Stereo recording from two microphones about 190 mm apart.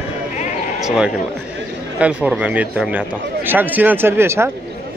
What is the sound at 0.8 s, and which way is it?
Speech, 5° right (ahead or behind).